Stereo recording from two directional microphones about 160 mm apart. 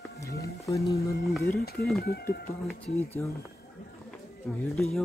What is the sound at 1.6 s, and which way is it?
Speech, 80° left.